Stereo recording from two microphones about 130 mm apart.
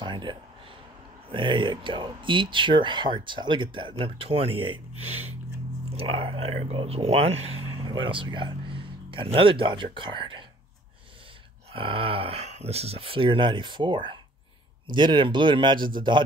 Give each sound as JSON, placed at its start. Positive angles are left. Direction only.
{"t": 0.0, "sound": "a sound", "side_deg": -35}
{"t": 1.3, "sound": "speech", "side_deg": -40}
{"t": 4.9, "sound": "speech", "side_deg": -55}
{"t": 5.9, "sound": "speech", "side_deg": -45}
{"t": 7.7, "sound": "speech", "side_deg": -35}
{"t": 11.7, "sound": "speech", "side_deg": -45}